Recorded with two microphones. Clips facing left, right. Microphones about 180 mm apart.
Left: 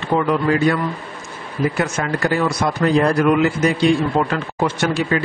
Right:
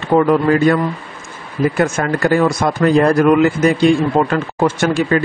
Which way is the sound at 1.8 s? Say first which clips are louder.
Right 5 dB; 50° right (ahead or behind).